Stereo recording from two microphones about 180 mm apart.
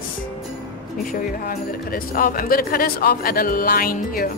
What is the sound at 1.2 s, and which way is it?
Speech, 55° left (ahead or behind).